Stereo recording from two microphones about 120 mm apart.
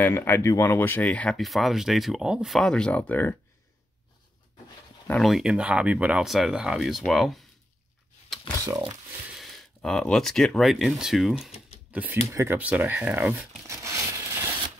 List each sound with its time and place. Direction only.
0.0 s speech: 20° left (ahead or behind)
5.2 s speech: 5° right (ahead or behind)
9.8 s speech: 5° left (ahead or behind)
11.9 s speech: 15° right (ahead or behind)
12.3 s speech: 25° right (ahead or behind)
12.5 s speech: 15° right (ahead or behind)
13.7 s crushing: 25° right (ahead or behind)